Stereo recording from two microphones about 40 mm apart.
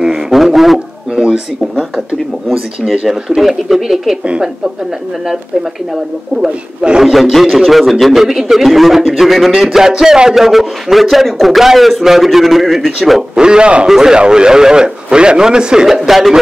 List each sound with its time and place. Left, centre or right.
0.0 s a sound: centre
3.1 s a man's voice: centre
6.4 s a man's voice: right
7.0 s a man's voice: centre
9.5 s a man's voice: centre
13.4 s a man's voice: right
13.8 s a man's voice: centre
14.1 s a man's voice: right
16.1 s a man's voice: centre